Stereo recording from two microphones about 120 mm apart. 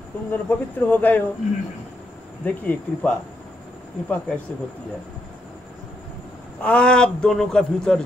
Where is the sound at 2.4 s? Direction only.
15° left (ahead or behind).